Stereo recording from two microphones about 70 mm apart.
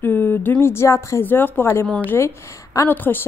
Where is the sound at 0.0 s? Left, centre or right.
Left.